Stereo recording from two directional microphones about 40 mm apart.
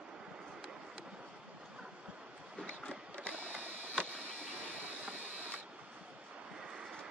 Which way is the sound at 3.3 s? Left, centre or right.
Right.